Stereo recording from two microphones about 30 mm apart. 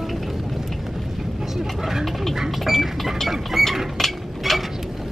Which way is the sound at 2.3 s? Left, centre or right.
Centre.